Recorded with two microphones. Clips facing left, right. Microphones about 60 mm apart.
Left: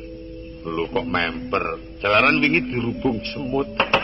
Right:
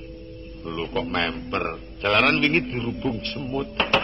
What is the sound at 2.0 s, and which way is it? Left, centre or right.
Mantra, left.